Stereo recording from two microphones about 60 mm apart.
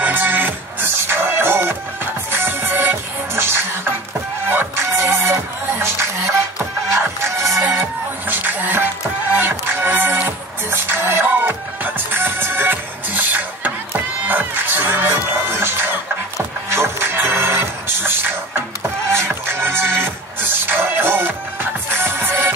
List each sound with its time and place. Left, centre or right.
0.0 s music: right
7.6 s music: right